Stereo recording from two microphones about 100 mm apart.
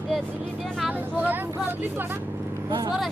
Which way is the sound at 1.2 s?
20° right (ahead or behind).